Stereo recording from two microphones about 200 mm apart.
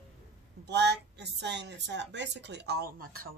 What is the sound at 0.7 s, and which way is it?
A woman's voice, 60° right (ahead or behind).